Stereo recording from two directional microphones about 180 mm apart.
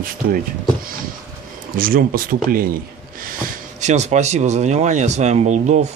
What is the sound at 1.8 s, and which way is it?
Speech, 50° right (ahead or behind).